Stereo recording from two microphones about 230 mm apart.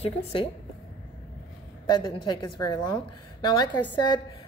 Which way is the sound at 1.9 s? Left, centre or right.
Centre.